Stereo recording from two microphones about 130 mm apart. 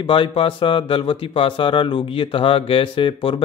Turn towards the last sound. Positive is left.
turn(degrees=45)  # may be behind; listen again after turning